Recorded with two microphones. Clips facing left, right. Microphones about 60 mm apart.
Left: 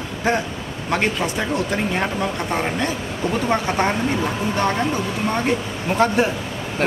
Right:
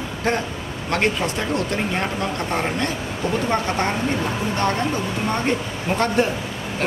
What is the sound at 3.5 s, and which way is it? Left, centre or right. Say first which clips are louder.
Speech: left 4 dB; centre.